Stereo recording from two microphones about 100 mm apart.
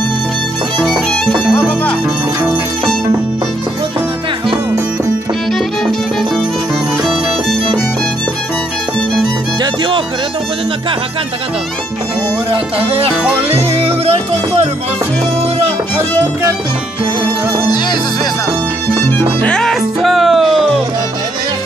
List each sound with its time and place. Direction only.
0.7 s music: 5° right (ahead or behind)
5.5 s music: 5° left (ahead or behind)
9.6 s music: 55° right (ahead or behind)
12.7 s music: 70° right (ahead or behind)
13.5 s music: 85° right
18.9 s music: 20° left (ahead or behind)
19.5 s music: 5° left (ahead or behind)